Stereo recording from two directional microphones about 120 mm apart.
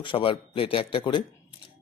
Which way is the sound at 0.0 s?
45° left (ahead or behind).